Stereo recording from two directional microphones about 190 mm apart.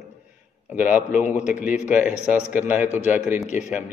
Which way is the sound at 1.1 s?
40° left (ahead or behind).